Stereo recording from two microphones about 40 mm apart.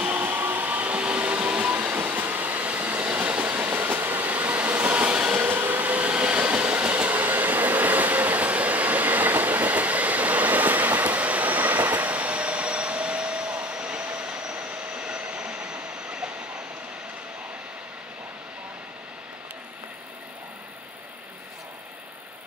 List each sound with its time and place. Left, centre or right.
0.0 s train: right
1.7 s train: right
5.0 s train: right
5.4 s train: right
5.9 s train: right
14.0 s a sound: right